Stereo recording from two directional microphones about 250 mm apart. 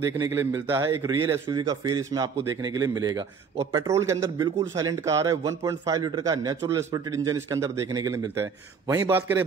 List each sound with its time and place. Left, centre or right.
0.2 s a man's voice: centre